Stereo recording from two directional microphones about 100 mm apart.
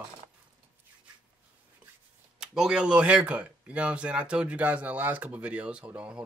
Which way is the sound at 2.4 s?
5° right (ahead or behind).